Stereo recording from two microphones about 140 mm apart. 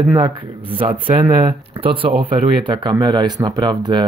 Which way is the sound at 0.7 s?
40° right (ahead or behind).